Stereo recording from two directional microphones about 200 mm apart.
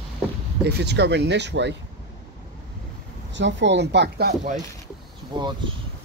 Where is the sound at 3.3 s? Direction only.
65° right (ahead or behind).